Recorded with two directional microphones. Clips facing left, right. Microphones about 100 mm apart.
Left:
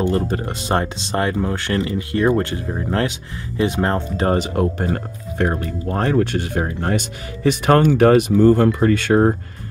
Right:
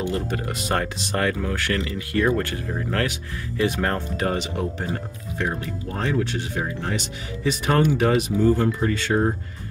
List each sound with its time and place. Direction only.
0.0 s speech: 40° left (ahead or behind)
4.3 s speech: 50° left (ahead or behind)